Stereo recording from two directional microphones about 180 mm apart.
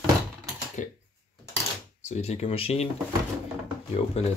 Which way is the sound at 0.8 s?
45° left (ahead or behind).